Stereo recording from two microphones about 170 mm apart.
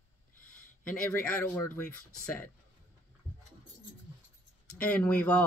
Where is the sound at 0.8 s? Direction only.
5° left (ahead or behind).